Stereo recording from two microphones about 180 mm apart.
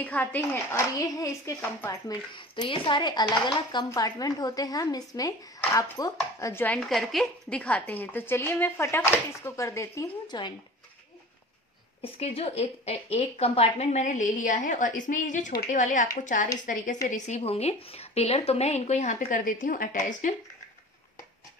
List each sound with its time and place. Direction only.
0.0 s a child's voice: 10° left (ahead or behind)
12.0 s speech: 35° left (ahead or behind)